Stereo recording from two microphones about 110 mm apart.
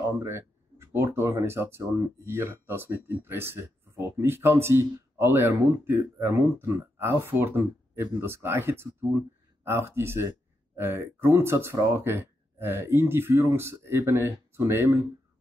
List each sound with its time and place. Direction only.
0.2 s speech: 25° right (ahead or behind)